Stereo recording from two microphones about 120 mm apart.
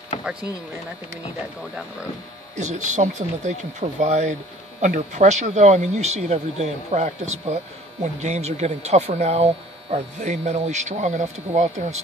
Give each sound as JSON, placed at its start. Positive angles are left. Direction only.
{"t": 0.2, "sound": "speech", "side_deg": -10}
{"t": 2.5, "sound": "speech", "side_deg": -85}